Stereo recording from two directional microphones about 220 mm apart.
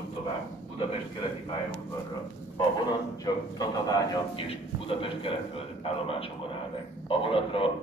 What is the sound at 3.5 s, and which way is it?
A man's voice, 15° left (ahead or behind).